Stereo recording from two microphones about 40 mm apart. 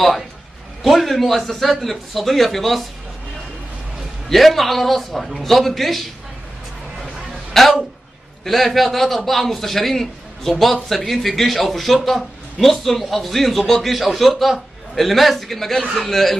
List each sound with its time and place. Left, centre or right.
0.8 s speech: centre
4.3 s speech: centre
7.5 s speech: centre